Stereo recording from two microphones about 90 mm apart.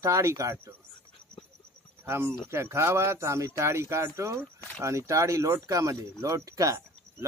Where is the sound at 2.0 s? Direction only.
25° right (ahead or behind).